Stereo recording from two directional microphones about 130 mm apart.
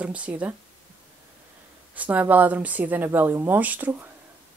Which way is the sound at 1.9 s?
10° right (ahead or behind).